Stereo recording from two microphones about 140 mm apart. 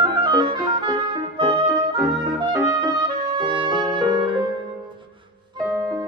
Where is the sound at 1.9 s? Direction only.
Centre (ahead or behind).